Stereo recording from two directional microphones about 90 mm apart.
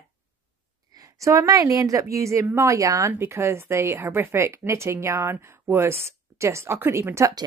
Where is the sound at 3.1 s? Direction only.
25° right (ahead or behind).